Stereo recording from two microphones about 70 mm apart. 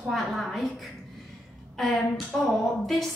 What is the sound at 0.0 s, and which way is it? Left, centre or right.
A woman's voice, centre.